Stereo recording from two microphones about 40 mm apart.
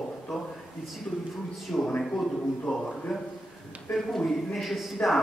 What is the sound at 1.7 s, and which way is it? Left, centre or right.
Speech, centre.